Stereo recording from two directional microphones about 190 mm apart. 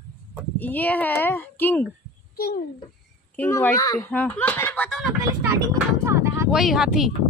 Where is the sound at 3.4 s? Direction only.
10° left (ahead or behind).